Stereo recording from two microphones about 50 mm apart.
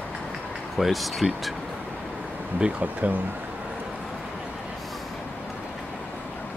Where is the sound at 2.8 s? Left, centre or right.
Right.